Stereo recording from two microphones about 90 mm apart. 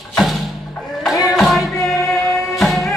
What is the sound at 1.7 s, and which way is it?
Music, 35° left (ahead or behind).